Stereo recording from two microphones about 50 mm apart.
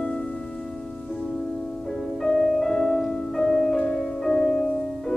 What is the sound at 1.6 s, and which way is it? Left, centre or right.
Music, centre.